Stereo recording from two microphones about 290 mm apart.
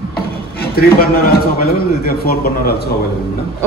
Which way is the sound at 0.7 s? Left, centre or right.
Left.